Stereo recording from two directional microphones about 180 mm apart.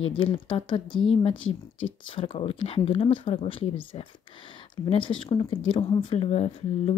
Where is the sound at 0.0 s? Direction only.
30° left (ahead or behind).